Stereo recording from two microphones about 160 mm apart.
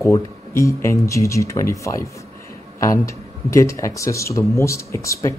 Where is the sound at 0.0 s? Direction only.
20° left (ahead or behind).